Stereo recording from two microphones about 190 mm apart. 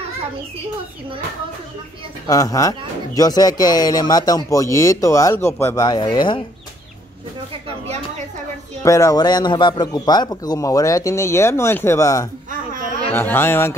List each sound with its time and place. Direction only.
2.2 s speech: 20° left (ahead or behind)
8.8 s a man's voice: 15° left (ahead or behind)